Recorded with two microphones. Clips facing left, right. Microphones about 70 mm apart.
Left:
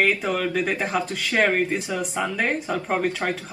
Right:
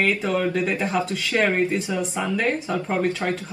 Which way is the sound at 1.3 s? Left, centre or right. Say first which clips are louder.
Even; left.